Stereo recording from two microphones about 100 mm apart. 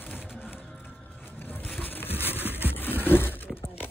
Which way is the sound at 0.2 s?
10° right (ahead or behind).